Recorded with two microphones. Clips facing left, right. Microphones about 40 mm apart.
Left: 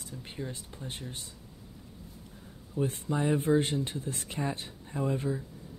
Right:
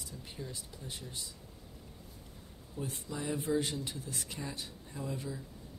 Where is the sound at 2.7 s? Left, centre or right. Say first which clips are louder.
Left 9 dB; left.